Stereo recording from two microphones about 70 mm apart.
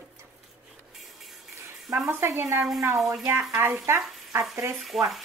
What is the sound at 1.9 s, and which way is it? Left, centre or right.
Speech, right.